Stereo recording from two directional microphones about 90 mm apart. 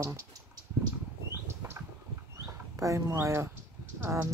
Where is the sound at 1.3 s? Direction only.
25° right (ahead or behind).